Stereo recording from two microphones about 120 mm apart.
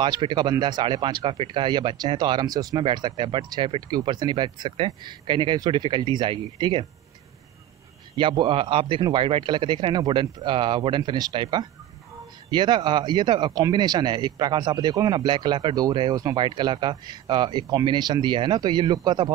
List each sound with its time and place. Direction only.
0.0 s speech: 40° right (ahead or behind)
8.2 s a man's voice: 45° right (ahead or behind)
12.4 s speech: 40° right (ahead or behind)